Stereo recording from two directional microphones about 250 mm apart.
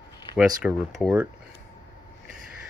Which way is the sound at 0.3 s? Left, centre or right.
Left.